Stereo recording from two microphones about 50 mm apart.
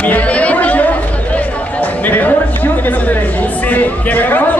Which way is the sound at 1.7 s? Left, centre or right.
Left.